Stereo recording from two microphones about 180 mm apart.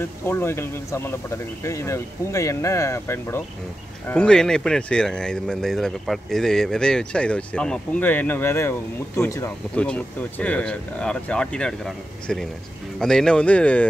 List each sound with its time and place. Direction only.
0.0 s speech: 15° left (ahead or behind)